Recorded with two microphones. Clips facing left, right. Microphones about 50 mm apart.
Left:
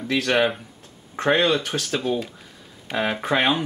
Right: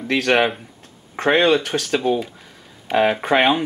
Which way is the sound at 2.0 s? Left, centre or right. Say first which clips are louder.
Right 5 dB; centre.